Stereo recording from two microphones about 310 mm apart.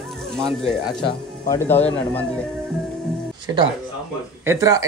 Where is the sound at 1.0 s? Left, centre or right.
Centre.